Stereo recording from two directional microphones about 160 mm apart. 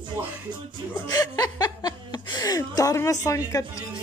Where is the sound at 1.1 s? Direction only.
25° left (ahead or behind).